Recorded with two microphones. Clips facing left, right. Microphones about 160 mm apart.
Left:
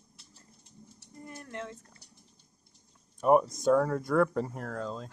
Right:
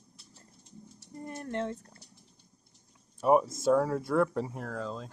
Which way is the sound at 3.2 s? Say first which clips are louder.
Left 1 dB; centre (ahead or behind).